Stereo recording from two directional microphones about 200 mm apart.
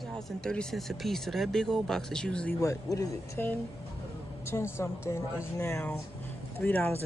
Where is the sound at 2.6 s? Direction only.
15° left (ahead or behind).